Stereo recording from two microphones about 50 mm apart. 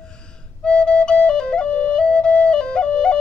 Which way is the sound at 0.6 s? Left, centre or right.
Centre.